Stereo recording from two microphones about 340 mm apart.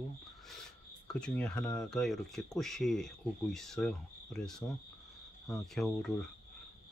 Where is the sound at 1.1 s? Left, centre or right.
Centre.